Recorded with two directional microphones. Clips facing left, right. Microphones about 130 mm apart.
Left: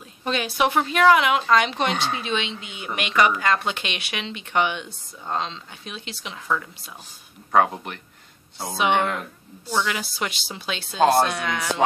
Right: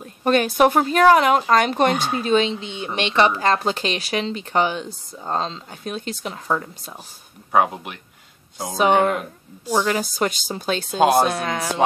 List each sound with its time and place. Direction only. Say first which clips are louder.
0.0 s a woman's voice: right 8 dB; 50° right (ahead or behind)
7.5 s speech: right 1 dB; 10° right (ahead or behind)
8.7 s a woman's voice: right 5 dB; 40° right (ahead or behind)
11.0 s speech: right 1 dB; 15° right (ahead or behind)
11.2 s a woman's voice: right 3 dB; 35° right (ahead or behind)